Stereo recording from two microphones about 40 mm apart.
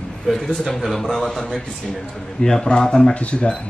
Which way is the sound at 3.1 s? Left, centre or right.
Left.